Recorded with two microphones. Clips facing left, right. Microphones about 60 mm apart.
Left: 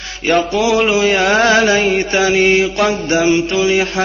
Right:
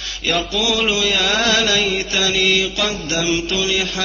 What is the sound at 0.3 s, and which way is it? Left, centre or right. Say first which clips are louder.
Mantra: left 7 dB; left.